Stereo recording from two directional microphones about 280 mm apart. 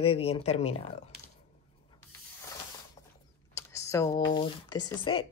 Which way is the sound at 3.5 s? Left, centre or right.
Centre.